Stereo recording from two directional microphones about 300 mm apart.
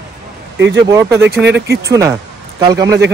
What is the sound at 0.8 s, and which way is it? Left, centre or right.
Speech, centre.